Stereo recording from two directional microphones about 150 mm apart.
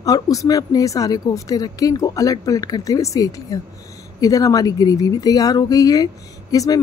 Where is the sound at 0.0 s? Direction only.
25° left (ahead or behind).